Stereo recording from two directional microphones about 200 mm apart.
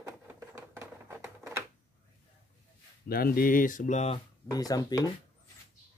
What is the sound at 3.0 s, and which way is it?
Speech, 50° left (ahead or behind).